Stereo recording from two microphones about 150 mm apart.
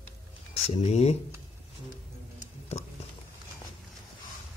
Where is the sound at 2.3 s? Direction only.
45° left (ahead or behind).